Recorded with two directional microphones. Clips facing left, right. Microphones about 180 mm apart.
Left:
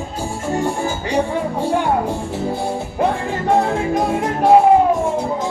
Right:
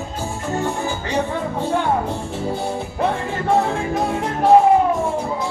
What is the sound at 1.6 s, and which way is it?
Music, 10° left (ahead or behind).